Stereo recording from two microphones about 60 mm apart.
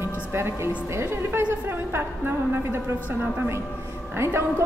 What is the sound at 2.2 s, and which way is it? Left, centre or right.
Speech, right.